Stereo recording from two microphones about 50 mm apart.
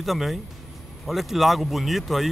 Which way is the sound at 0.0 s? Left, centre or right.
Centre.